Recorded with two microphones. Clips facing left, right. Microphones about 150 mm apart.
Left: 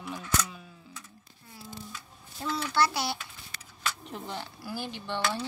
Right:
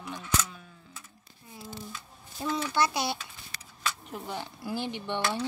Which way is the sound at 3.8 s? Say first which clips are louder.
Right 1 dB; 5° right (ahead or behind).